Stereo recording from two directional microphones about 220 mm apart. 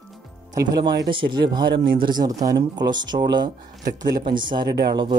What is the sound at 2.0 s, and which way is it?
Speech, 20° right (ahead or behind).